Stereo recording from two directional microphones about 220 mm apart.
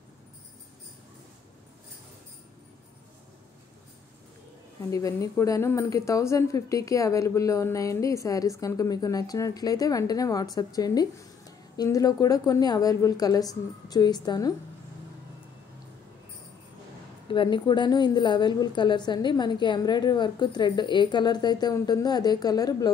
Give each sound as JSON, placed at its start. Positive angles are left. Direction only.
{"t": 4.9, "sound": "speech", "side_deg": 15}
{"t": 17.3, "sound": "a woman's voice", "side_deg": 20}